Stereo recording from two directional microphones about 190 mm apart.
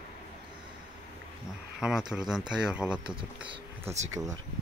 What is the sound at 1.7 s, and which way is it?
Speech, 5° right (ahead or behind).